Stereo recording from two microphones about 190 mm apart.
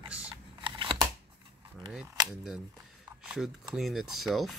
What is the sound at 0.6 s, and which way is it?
Scissors, 25° right (ahead or behind).